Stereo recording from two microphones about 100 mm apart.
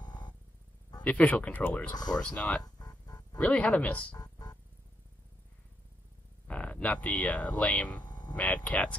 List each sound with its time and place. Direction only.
0.0 s music: 45° left (ahead or behind)
1.0 s speech: 15° left (ahead or behind)
2.6 s music: 40° left (ahead or behind)
3.3 s speech: 15° left (ahead or behind)
4.2 s music: 40° left (ahead or behind)
6.4 s speech: 15° left (ahead or behind)
8.1 s a sound: 45° left (ahead or behind)
8.4 s speech: 15° left (ahead or behind)